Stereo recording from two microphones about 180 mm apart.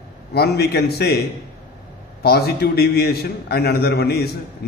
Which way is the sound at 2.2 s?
60° left (ahead or behind).